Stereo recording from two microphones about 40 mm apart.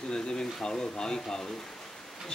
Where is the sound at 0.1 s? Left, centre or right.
Centre.